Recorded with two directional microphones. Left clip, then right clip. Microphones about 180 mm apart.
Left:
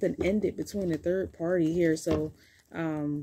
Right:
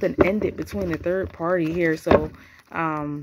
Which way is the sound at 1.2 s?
55° right (ahead or behind).